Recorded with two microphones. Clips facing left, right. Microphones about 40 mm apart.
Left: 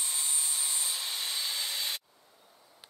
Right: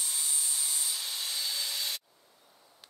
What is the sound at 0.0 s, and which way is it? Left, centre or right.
Wood, left.